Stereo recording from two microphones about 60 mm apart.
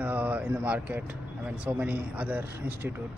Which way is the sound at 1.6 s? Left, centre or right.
Right.